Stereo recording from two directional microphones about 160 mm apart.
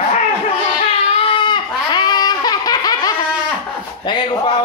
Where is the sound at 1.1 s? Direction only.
35° left (ahead or behind).